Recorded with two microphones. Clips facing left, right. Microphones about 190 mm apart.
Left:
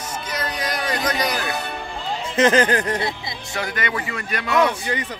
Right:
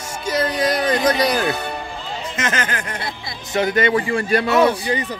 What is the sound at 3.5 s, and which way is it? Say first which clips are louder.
Speech: right 9 dB; 25° right (ahead or behind).